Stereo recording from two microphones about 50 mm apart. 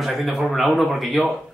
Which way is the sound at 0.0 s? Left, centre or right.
Centre.